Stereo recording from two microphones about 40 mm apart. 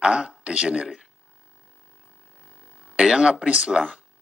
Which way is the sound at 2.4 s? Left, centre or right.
Right.